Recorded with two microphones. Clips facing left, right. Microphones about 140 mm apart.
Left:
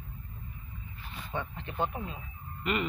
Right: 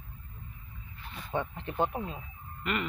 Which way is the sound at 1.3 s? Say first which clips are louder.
Right 4 dB; 35° right (ahead or behind).